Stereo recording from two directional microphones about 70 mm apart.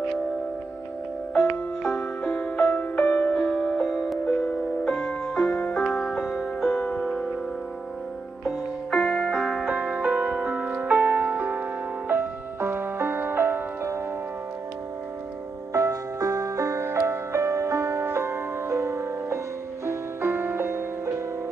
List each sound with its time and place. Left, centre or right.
1.3 s music: centre
3.3 s music: centre
6.2 s music: centre
8.5 s music: centre; by 13.9 s right
15.7 s music: right